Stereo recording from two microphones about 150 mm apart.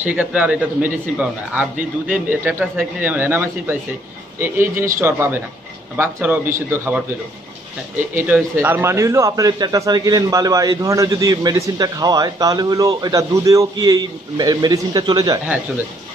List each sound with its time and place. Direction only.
0.0 s a man's voice: 10° right (ahead or behind)
8.5 s a man's voice: 15° right (ahead or behind)